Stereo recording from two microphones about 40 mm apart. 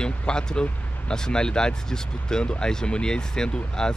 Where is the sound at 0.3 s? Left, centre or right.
Left.